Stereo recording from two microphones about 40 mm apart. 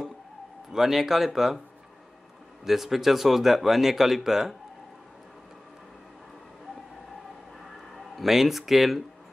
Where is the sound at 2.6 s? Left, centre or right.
Centre.